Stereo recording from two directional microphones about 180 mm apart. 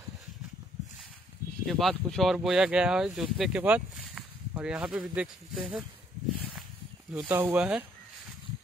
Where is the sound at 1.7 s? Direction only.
Centre (ahead or behind).